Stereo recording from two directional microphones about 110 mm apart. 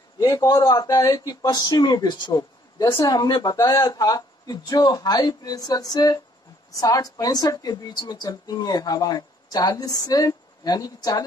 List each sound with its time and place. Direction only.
0.2 s speech: 30° left (ahead or behind)
3.5 s speech: 30° left (ahead or behind)